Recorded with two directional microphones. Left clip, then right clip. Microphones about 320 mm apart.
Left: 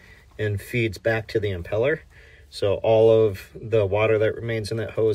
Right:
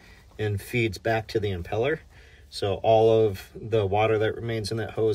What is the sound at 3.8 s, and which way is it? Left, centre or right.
Speech, centre.